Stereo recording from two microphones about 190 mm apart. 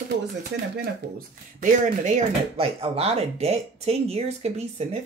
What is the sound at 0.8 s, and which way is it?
Speech, 50° right (ahead or behind).